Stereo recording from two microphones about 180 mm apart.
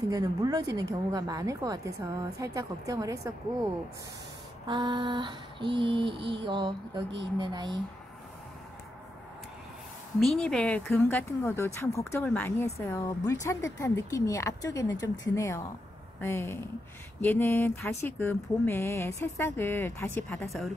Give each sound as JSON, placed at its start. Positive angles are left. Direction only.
{"t": 0.1, "sound": "a woman's voice", "side_deg": -20}
{"t": 4.6, "sound": "a woman's voice", "side_deg": -25}
{"t": 10.2, "sound": "mantra", "side_deg": 5}